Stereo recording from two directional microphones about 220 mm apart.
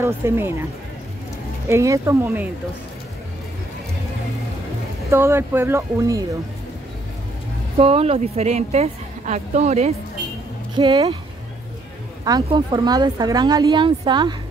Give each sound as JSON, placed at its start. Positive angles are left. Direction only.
{"t": 0.0, "sound": "speech", "side_deg": -10}
{"t": 1.7, "sound": "speech", "side_deg": -15}
{"t": 5.1, "sound": "speech", "side_deg": -10}
{"t": 7.7, "sound": "speech", "side_deg": -25}
{"t": 10.8, "sound": "speech", "side_deg": -20}
{"t": 12.3, "sound": "speech", "side_deg": -20}